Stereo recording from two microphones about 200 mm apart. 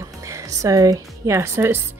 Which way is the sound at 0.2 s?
15° right (ahead or behind).